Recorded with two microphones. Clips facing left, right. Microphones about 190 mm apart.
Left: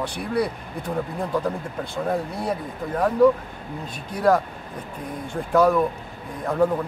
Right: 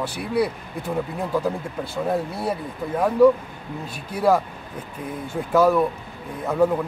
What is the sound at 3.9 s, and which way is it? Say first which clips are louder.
Speech: even; 5° right (ahead or behind).